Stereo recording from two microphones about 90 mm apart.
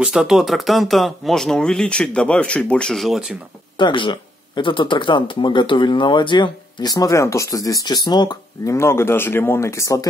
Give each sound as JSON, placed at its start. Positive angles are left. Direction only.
{"t": 0.0, "sound": "speech", "side_deg": -5}
{"t": 3.7, "sound": "speech", "side_deg": 65}
{"t": 8.6, "sound": "speech", "side_deg": 30}